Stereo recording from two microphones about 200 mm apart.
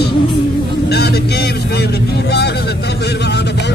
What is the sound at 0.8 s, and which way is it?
Vehicle, 55° left (ahead or behind).